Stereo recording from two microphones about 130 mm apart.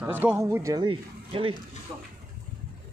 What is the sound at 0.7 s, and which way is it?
Speech, 40° right (ahead or behind).